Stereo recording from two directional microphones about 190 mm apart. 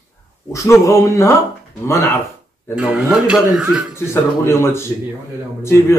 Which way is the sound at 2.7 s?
10° right (ahead or behind).